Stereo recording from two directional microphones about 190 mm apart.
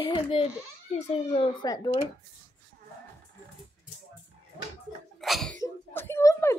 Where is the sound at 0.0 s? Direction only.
25° left (ahead or behind).